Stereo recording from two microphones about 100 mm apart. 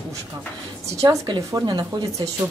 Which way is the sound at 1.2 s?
45° right (ahead or behind).